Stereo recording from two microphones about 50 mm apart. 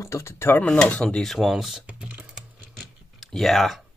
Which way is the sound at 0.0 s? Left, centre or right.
Left.